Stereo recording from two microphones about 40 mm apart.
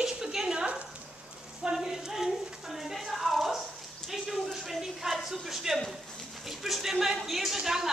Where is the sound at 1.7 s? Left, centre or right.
Centre.